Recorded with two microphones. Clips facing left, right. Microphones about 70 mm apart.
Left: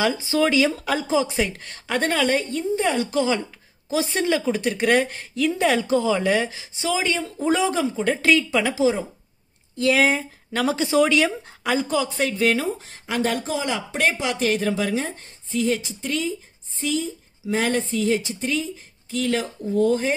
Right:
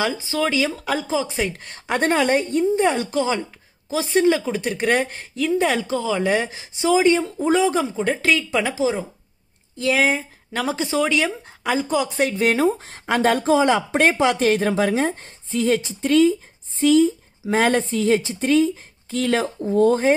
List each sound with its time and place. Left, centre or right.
0.0 s speech: centre
1.0 s speech: centre
1.3 s a woman's voice: centre; by 3.0 s right
3.1 s speech: centre
6.2 s a woman's voice: centre
7.3 s speech: centre
12.3 s a woman's voice: right
12.7 s speech: right
15.5 s a woman's voice: right